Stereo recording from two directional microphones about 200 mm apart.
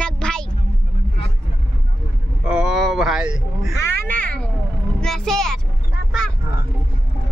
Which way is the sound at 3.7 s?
15° left (ahead or behind).